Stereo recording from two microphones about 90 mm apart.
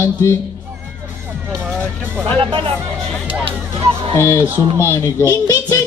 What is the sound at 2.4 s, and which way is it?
Speech, 75° right (ahead or behind).